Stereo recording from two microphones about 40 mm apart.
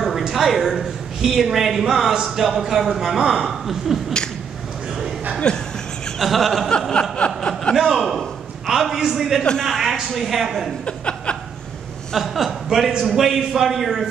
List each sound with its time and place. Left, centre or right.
0.3 s a man's voice: centre
5.4 s a woman's voice: left
6.1 s speech: centre
6.9 s chuckle: left
7.7 s a sound: centre
9.4 s a woman's voice: left
9.7 s a woman's voice: centre
10.1 s speech: centre
10.9 s chuckle: left
12.2 s a man's voice: centre